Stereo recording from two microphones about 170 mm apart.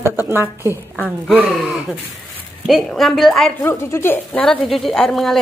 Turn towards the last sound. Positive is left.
turn(degrees=0)  # may be behind; listen again after turning